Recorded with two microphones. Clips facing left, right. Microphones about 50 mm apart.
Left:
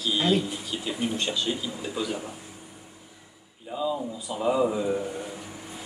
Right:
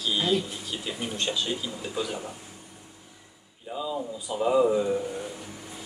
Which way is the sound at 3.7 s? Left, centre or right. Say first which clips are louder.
Left 3 dB; centre.